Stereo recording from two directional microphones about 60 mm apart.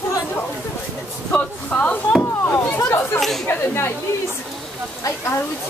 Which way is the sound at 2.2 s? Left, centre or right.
Left.